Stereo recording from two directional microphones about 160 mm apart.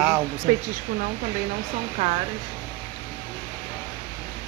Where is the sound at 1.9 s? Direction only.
40° right (ahead or behind).